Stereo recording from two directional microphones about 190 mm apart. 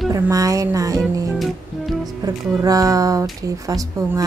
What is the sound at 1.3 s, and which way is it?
Music, centre (ahead or behind).